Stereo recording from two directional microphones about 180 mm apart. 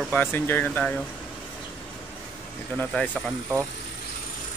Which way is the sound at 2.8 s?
5° left (ahead or behind).